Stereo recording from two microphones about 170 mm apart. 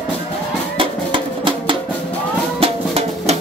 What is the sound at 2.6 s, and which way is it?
Music, 40° right (ahead or behind).